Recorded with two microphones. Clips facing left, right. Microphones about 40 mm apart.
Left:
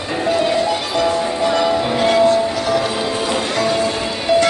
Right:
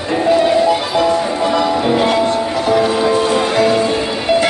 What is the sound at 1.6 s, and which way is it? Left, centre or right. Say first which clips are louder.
Music: right 4 dB; centre.